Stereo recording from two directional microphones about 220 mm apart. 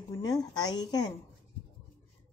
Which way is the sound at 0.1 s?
15° left (ahead or behind).